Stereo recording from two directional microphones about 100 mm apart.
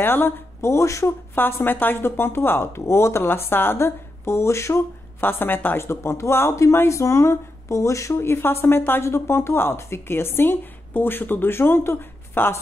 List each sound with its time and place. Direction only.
0.0 s a woman's voice: 20° left (ahead or behind)